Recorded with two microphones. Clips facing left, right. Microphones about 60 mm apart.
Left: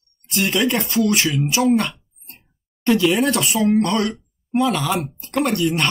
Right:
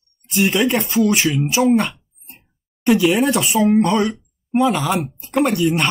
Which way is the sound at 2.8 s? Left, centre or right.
Centre.